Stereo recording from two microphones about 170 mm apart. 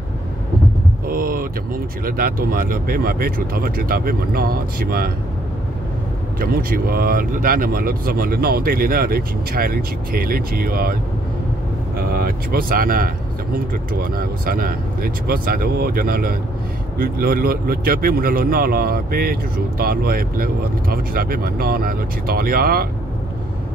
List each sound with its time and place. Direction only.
1.0 s a sound: 55° right (ahead or behind)
2.0 s speech: 55° right (ahead or behind)
6.4 s speech: 60° right (ahead or behind)
12.1 s speech: 60° right (ahead or behind)